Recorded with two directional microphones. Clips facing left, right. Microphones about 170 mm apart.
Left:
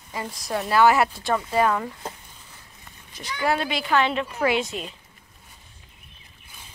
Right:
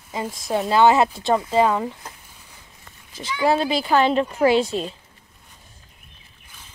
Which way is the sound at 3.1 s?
25° right (ahead or behind).